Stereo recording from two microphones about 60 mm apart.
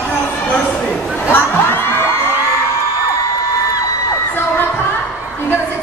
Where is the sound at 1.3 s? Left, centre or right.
Left.